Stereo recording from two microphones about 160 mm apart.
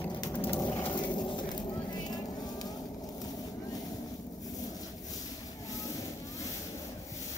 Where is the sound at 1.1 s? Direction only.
30° left (ahead or behind).